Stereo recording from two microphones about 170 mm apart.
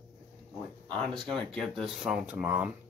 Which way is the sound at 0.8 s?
5° left (ahead or behind).